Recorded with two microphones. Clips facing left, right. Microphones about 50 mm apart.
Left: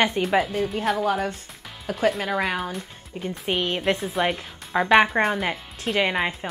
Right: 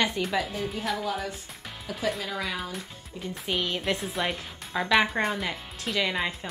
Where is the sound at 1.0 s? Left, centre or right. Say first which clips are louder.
Left 7 dB; left.